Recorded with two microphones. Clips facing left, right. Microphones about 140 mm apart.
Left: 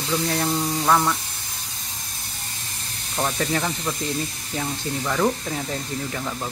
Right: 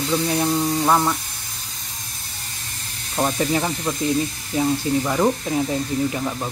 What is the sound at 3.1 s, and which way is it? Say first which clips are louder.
Speech: right 4 dB; 15° right (ahead or behind).